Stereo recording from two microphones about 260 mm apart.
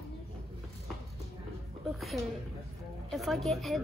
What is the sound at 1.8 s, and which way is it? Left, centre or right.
A woman's voice, centre.